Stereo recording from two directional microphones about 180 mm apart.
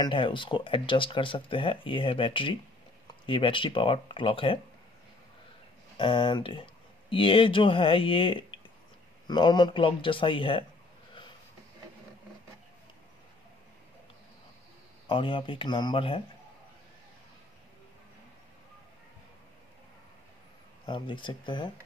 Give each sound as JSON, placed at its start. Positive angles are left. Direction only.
{"t": 0.0, "sound": "speech", "side_deg": 25}
{"t": 5.9, "sound": "speech", "side_deg": 25}
{"t": 15.0, "sound": "speech", "side_deg": 30}
{"t": 20.8, "sound": "speech", "side_deg": 25}